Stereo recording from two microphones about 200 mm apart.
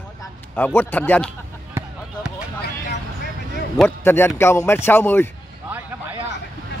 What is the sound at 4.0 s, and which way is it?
A man's voice, 10° left (ahead or behind).